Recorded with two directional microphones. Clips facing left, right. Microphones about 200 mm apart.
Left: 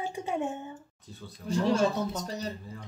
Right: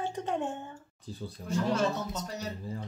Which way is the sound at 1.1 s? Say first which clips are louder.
Right 6 dB; 30° right (ahead or behind).